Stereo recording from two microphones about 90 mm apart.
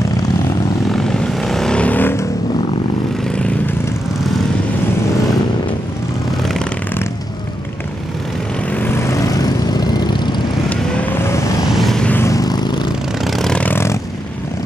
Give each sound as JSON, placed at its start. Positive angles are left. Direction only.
{"t": 0.9, "sound": "vehicle", "side_deg": 5}
{"t": 8.7, "sound": "vehicle", "side_deg": 25}
{"t": 10.7, "sound": "vehicle", "side_deg": 15}
{"t": 11.2, "sound": "vehicle", "side_deg": 35}
{"t": 11.6, "sound": "vehicle", "side_deg": 0}
{"t": 12.2, "sound": "vehicle", "side_deg": 40}
{"t": 13.2, "sound": "vehicle", "side_deg": 0}
{"t": 13.7, "sound": "vehicle", "side_deg": 25}